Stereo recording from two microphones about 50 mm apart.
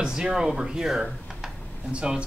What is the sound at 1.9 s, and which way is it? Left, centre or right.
Speech, right.